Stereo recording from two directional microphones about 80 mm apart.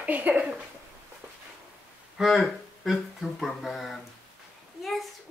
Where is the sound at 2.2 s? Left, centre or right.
Centre.